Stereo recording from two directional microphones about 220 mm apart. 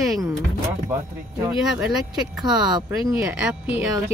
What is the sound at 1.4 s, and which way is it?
Speech, 10° right (ahead or behind).